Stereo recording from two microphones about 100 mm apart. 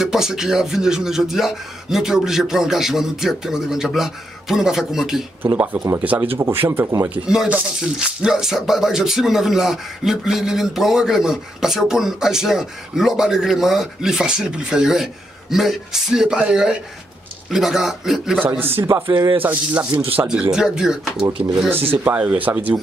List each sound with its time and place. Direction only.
0.0 s speech: 5° right (ahead or behind)
5.4 s speech: 15° right (ahead or behind)
7.2 s speech: 10° right (ahead or behind)
18.4 s speech: 20° right (ahead or behind)
19.4 s speech: 15° right (ahead or behind)
20.5 s speech: 5° right (ahead or behind)
21.6 s speech: 20° right (ahead or behind)